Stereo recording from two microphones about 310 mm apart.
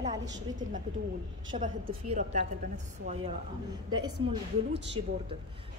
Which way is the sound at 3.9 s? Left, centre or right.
Centre.